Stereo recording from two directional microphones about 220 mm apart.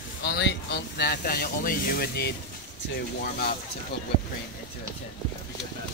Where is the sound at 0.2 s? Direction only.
50° left (ahead or behind).